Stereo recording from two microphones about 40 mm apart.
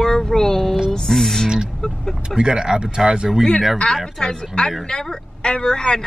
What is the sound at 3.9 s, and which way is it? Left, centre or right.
A woman's voice, centre.